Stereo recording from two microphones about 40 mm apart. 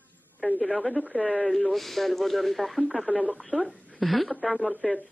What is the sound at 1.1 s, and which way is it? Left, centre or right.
Speech, left.